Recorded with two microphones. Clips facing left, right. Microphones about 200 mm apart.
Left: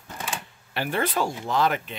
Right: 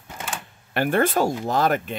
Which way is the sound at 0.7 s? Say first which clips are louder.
Right 6 dB; 50° right (ahead or behind).